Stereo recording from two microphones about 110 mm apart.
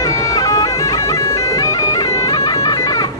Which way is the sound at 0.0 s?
30° left (ahead or behind).